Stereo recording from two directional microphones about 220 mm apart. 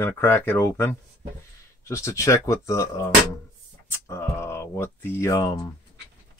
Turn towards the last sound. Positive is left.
turn(degrees=15)  # may be behind; listen again after turning